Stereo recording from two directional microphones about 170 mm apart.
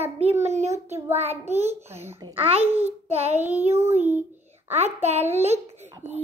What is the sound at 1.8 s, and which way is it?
Child singing, 15° right (ahead or behind).